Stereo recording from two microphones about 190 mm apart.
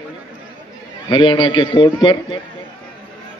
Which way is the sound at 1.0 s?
25° left (ahead or behind).